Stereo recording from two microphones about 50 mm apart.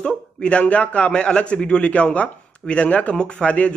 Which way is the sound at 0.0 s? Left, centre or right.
Left.